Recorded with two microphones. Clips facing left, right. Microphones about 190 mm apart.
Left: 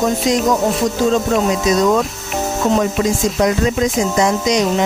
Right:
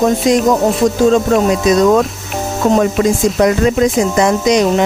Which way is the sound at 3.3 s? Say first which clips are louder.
Right 4 dB; 60° right (ahead or behind).